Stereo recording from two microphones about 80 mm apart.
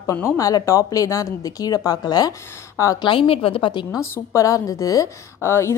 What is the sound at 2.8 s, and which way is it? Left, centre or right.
Speech, left.